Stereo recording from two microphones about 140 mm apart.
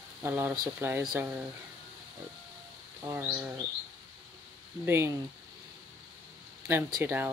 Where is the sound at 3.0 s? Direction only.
15° right (ahead or behind).